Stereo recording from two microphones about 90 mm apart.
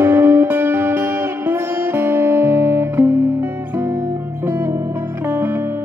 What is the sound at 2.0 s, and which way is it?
Music, 30° right (ahead or behind).